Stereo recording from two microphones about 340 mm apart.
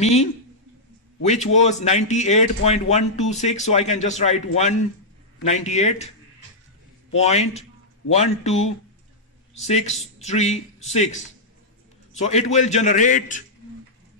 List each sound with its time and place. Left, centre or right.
0.0 s speech: centre
7.2 s speech: centre